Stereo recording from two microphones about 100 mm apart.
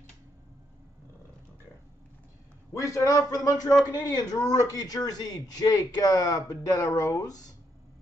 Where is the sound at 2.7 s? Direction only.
30° left (ahead or behind).